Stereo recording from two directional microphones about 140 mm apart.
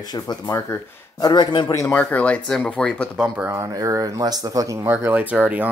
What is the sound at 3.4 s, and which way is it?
Speech, 20° right (ahead or behind).